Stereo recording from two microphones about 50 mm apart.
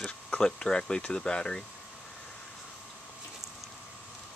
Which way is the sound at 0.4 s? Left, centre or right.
Centre.